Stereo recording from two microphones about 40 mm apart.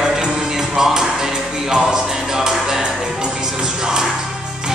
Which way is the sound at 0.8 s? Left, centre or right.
Centre.